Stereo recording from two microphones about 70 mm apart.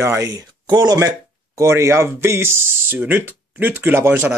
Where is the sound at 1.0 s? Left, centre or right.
Right.